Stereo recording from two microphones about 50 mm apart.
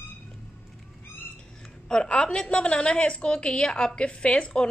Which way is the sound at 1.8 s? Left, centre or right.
Centre.